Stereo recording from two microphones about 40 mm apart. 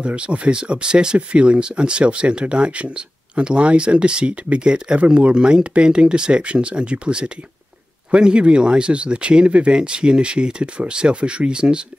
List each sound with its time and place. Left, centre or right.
0.0 s speech: right